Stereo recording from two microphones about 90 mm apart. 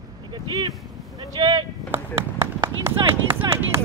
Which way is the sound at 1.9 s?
30° right (ahead or behind).